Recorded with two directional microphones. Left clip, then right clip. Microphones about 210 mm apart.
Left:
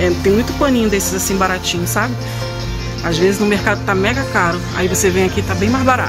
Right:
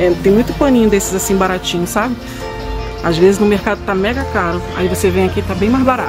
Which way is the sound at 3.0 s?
15° right (ahead or behind).